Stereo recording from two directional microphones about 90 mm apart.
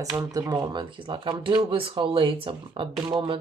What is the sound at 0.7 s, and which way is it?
Speech, 65° right (ahead or behind).